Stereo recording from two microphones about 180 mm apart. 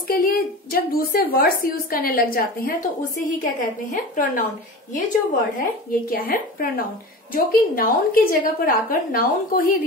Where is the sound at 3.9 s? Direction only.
45° left (ahead or behind).